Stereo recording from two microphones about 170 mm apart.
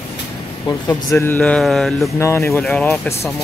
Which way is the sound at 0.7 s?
10° left (ahead or behind).